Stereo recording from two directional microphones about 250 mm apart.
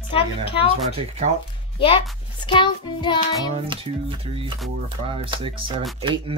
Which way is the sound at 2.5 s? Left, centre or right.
Centre.